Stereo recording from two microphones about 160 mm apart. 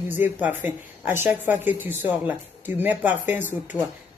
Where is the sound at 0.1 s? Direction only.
10° right (ahead or behind).